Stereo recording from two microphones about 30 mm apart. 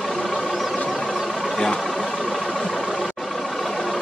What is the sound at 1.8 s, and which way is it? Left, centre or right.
Vehicle, centre.